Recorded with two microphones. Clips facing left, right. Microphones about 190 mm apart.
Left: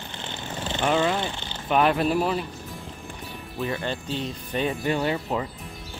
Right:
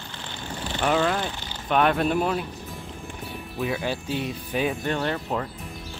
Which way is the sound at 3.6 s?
5° right (ahead or behind).